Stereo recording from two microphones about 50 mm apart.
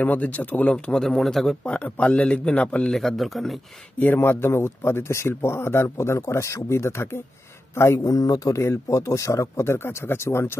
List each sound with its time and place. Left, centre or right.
0.0 s speech: left
0.9 s speech: centre
1.7 s speech: left
2.9 s speech: centre
4.2 s speech: left
8.5 s speech: left